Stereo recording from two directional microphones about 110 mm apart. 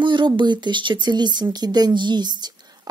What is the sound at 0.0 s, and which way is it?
A woman's voice, 45° right (ahead or behind).